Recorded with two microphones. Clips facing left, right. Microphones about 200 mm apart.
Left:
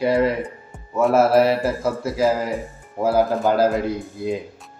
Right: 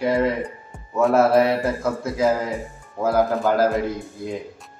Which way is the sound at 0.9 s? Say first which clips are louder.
Left 1 dB; 5° left (ahead or behind).